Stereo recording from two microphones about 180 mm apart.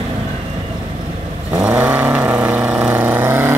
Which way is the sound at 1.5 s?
10° right (ahead or behind).